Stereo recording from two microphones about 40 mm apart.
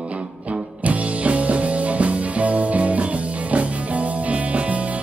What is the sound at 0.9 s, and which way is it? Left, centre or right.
Music, right.